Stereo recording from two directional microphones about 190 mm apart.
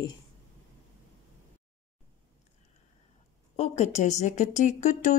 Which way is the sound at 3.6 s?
35° left (ahead or behind).